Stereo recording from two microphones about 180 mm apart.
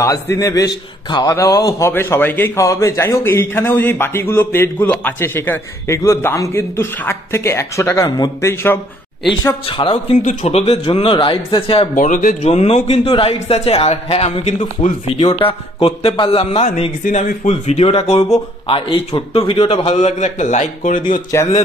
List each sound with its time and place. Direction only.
0.0 s a man's voice: 15° left (ahead or behind)
9.7 s speech: 30° left (ahead or behind)
11.9 s speech: 45° left (ahead or behind)
21.3 s a man's voice: 15° left (ahead or behind)